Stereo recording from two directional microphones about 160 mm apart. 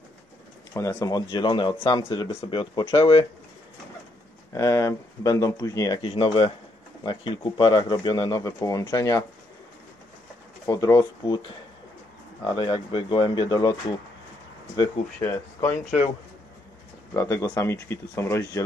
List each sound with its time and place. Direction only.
0.7 s speech: 20° left (ahead or behind)
4.6 s speech: 20° left (ahead or behind)
6.0 s speech: 35° left (ahead or behind)
10.6 s speech: 20° left (ahead or behind)
12.4 s speech: 30° left (ahead or behind)
15.1 s speech: 15° left (ahead or behind)
15.8 s speech: 45° left (ahead or behind)
17.1 s speech: 20° left (ahead or behind)